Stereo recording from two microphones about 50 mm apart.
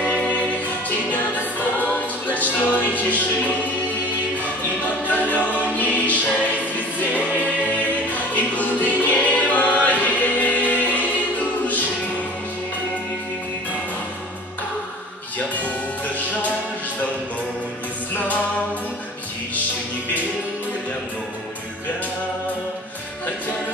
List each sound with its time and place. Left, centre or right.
0.0 s music: left
0.8 s choir: left
3.0 s speech: left
4.8 s choir: left
6.7 s music: left
15.3 s music: left
18.1 s music: left